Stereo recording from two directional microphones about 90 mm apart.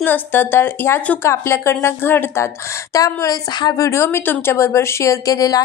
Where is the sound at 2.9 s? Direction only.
40° left (ahead or behind).